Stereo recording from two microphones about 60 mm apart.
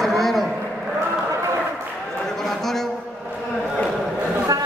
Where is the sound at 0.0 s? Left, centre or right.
Centre.